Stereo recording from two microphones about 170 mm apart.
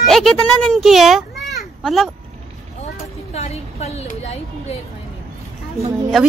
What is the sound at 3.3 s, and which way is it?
Speech, 40° left (ahead or behind).